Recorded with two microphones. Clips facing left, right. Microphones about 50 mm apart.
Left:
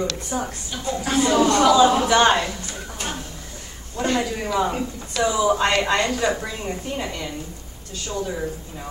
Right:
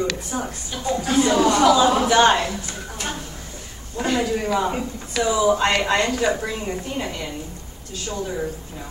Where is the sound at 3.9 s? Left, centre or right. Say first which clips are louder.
Right 1 dB; centre.